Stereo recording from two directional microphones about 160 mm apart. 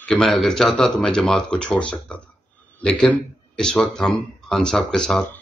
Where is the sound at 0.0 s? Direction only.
5° left (ahead or behind).